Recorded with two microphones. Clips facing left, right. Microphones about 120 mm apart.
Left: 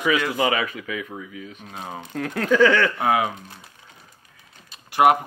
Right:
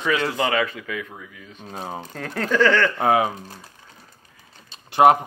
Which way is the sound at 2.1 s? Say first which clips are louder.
Left 3 dB; centre (ahead or behind).